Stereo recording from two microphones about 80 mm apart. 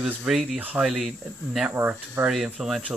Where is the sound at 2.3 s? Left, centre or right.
Centre.